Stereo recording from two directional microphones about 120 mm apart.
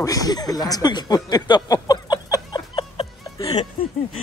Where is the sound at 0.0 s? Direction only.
30° left (ahead or behind).